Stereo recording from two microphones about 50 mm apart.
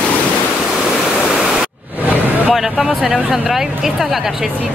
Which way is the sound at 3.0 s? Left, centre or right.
Centre.